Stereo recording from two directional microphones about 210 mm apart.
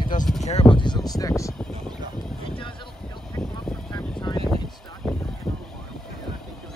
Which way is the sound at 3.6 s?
5° left (ahead or behind).